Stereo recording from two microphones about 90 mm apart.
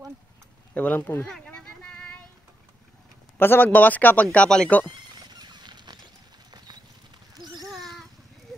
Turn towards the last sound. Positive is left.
turn(degrees=-50)  # may be behind; listen again after turning